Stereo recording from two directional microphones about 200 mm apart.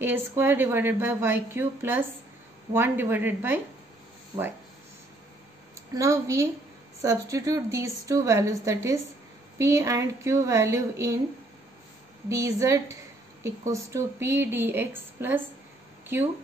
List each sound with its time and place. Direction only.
0.0 s a woman's voice: 10° right (ahead or behind)
5.9 s a woman's voice: 15° right (ahead or behind)
12.3 s a woman's voice: 15° right (ahead or behind)